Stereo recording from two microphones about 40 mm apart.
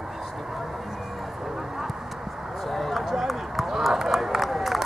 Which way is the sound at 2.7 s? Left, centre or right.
Centre.